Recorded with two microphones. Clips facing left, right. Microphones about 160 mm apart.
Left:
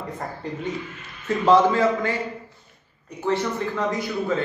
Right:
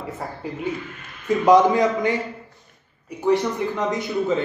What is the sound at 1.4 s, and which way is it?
Speech, 15° right (ahead or behind).